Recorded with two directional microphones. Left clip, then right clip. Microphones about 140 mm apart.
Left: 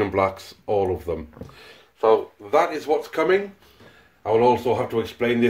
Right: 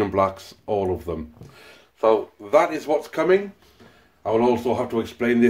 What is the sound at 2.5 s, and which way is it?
Speech, 50° right (ahead or behind).